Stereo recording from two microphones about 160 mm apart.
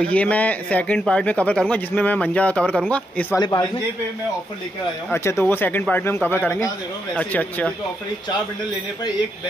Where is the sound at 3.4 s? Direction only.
25° left (ahead or behind).